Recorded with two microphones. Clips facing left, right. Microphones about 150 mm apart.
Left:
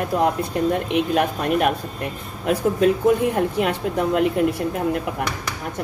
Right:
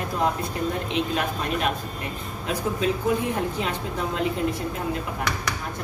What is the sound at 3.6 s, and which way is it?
Speech, 60° left (ahead or behind).